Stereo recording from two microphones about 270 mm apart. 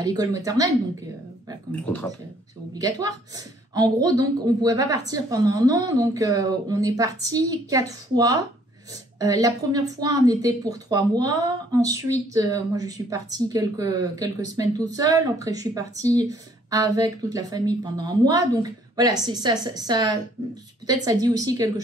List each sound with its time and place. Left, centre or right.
0.0 s a woman's voice: centre
1.7 s speech: centre
2.7 s a woman's voice: centre